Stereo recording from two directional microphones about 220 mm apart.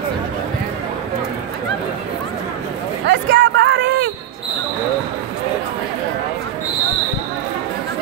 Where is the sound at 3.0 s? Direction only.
55° right (ahead or behind).